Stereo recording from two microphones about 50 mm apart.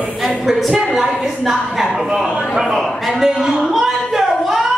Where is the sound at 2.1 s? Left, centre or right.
Centre.